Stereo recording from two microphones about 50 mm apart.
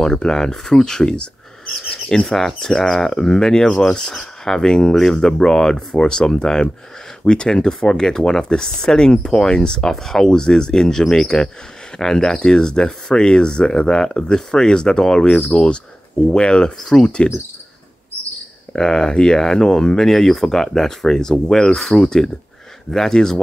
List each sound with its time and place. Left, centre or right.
0.0 s speech: centre
18.7 s speech: centre